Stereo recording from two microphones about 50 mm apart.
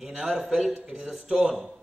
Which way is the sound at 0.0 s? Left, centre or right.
Centre.